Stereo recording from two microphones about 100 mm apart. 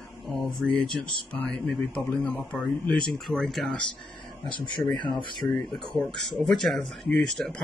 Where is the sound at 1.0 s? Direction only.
55° right (ahead or behind).